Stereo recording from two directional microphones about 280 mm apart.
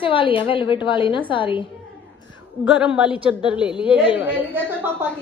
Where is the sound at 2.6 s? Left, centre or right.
Centre.